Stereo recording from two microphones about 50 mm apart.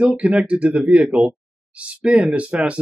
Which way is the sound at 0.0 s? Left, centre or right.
Centre.